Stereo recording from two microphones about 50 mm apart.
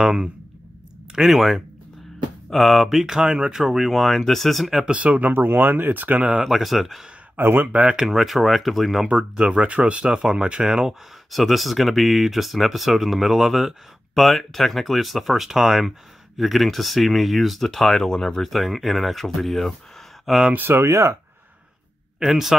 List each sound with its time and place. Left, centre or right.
0.0 s speech: centre
4.9 s speech: right
5.3 s speech: right
6.4 s speech: centre
7.3 s speech: right
7.9 s speech: centre
9.0 s speech: centre
10.9 s speech: centre
20.7 s speech: right
22.2 s speech: centre